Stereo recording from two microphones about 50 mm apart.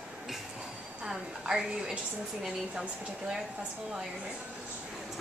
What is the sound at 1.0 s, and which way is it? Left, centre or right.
Speech, centre.